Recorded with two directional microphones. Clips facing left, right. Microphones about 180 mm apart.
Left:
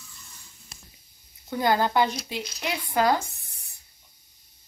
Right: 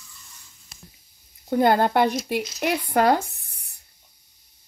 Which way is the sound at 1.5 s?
55° right (ahead or behind).